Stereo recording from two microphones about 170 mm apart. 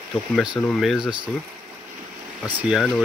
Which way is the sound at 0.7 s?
Centre (ahead or behind).